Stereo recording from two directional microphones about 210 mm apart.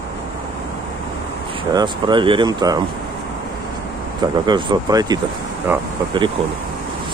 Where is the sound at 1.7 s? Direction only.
20° right (ahead or behind).